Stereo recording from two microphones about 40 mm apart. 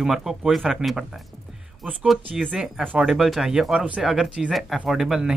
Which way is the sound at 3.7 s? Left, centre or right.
Right.